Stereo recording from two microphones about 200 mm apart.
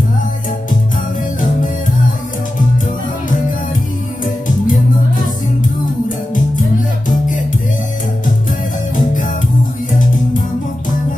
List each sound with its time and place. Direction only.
4.2 s music: 40° left (ahead or behind)